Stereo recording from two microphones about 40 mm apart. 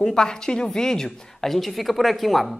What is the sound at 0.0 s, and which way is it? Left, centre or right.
A woman's voice, centre.